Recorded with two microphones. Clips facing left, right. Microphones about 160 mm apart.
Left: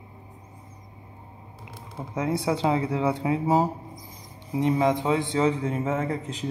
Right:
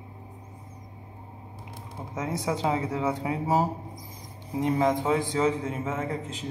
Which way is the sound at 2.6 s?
30° left (ahead or behind).